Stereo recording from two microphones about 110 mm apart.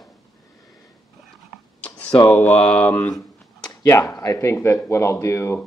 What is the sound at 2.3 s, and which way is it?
Mantra, 15° left (ahead or behind).